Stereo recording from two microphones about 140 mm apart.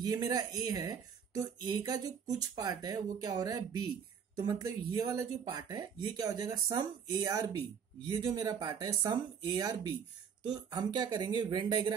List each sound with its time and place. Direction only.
0.0 s speech: 30° right (ahead or behind)